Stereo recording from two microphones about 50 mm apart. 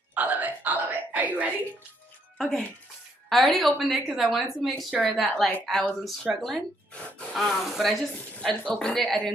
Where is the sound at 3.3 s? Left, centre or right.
Centre.